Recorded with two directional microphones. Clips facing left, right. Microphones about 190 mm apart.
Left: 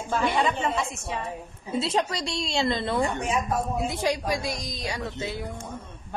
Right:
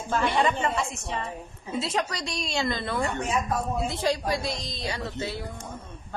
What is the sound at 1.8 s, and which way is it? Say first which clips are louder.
A woman's voice: left 3 dB; 25° left (ahead or behind).